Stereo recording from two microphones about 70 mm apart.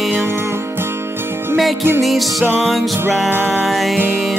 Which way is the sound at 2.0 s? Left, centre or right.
Centre.